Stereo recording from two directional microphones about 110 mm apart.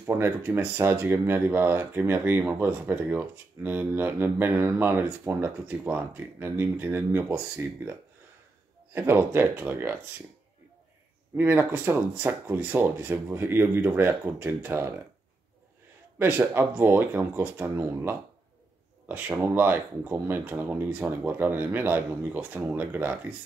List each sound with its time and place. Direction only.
0.0 s speech: 25° right (ahead or behind)
11.3 s speech: 15° right (ahead or behind)
16.2 s speech: 20° right (ahead or behind)